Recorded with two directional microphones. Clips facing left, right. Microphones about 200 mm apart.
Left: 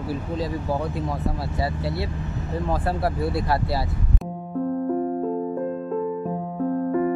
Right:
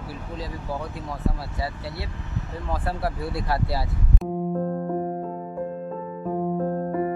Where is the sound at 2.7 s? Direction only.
35° left (ahead or behind).